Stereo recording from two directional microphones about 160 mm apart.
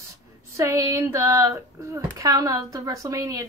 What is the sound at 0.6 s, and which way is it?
Speech, 20° right (ahead or behind).